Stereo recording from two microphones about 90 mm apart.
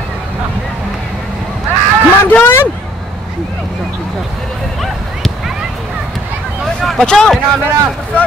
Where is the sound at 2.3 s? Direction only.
20° left (ahead or behind).